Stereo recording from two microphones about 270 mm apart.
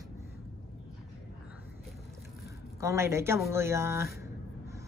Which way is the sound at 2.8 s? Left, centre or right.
Centre.